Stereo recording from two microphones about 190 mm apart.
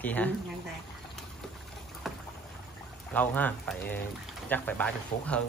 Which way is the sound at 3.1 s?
10° left (ahead or behind).